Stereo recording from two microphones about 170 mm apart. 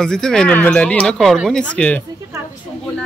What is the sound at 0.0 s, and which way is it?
Speech, 5° left (ahead or behind).